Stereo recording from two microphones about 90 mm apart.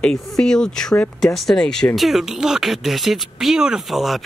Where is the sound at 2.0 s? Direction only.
5° right (ahead or behind).